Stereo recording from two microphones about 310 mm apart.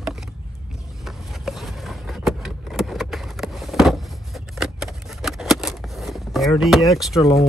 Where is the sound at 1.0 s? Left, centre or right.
Centre.